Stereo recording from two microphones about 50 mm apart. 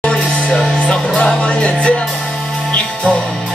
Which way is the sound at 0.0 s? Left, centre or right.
Centre.